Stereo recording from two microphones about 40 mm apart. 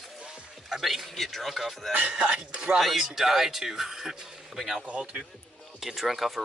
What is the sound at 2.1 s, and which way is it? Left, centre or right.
Speech, right.